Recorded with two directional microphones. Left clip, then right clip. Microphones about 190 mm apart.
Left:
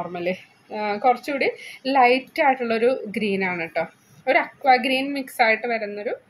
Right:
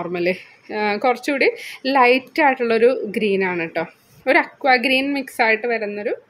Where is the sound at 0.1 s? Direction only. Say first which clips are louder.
Right 5 dB; 30° right (ahead or behind).